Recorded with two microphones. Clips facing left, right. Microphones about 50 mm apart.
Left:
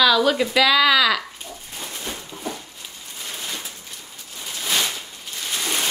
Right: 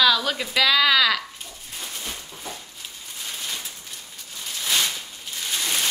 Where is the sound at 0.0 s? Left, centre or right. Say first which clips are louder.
Left 4 dB; centre.